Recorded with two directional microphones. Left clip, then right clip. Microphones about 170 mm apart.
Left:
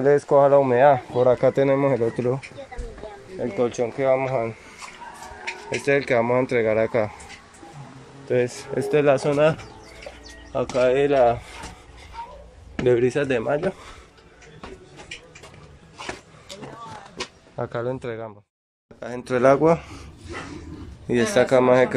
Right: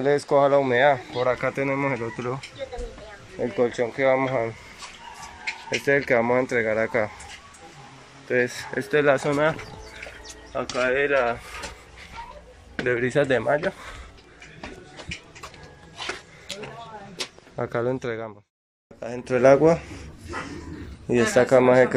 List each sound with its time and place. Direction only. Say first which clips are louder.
0.3 s speech: left 2 dB; centre (ahead or behind)
3.3 s speech: even; 5° right (ahead or behind)
5.7 s speech: even; centre (ahead or behind)
8.3 s speech: left 1 dB; 10° left (ahead or behind)
10.5 s speech: left 4 dB; 20° left (ahead or behind)
12.7 s a sound: left 5 dB; 15° left (ahead or behind)
13.0 s speech: even; centre (ahead or behind)
17.6 s speech: right 1 dB; centre (ahead or behind)
18.9 s speech: even; 15° left (ahead or behind)
21.1 s speech: even; 10° left (ahead or behind)